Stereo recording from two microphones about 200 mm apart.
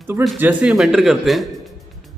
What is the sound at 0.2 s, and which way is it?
A man's voice, 5° right (ahead or behind).